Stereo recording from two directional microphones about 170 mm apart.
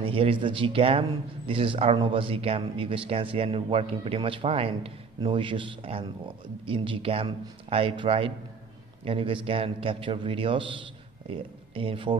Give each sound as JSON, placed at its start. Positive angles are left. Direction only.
{"t": 0.0, "sound": "speech", "side_deg": -30}